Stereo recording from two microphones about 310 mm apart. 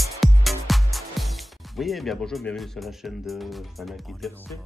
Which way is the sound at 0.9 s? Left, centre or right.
Centre.